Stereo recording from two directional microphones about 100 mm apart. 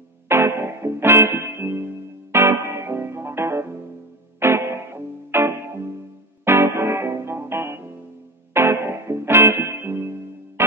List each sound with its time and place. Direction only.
0.3 s music: 25° right (ahead or behind)